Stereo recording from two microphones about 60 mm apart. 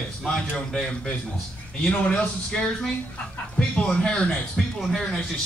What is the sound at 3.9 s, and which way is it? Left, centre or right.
Speech, centre.